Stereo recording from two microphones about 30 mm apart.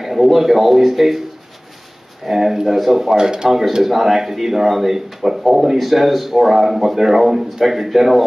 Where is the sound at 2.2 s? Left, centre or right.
Centre.